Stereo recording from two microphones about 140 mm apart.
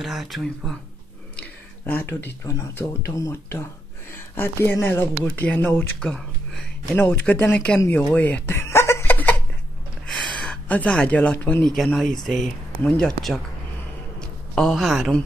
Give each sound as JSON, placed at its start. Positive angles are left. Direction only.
{"t": 0.0, "sound": "speech", "side_deg": 0}
{"t": 1.9, "sound": "speech", "side_deg": 15}
{"t": 6.0, "sound": "speech", "side_deg": 0}
{"t": 7.0, "sound": "speech", "side_deg": 15}
{"t": 8.1, "sound": "chuckle", "side_deg": 10}
{"t": 10.0, "sound": "speech", "side_deg": 5}